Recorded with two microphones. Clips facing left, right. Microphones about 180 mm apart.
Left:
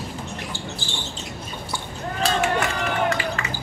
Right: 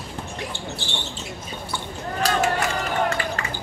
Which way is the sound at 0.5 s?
60° right (ahead or behind).